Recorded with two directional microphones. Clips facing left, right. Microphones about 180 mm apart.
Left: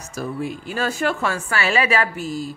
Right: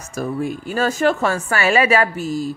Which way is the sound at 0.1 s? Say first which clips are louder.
Right 4 dB; 45° right (ahead or behind).